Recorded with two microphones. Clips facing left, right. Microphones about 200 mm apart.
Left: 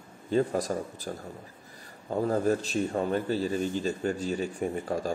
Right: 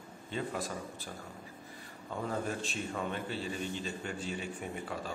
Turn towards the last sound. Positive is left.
turn(degrees=40)  # may be behind; listen again after turning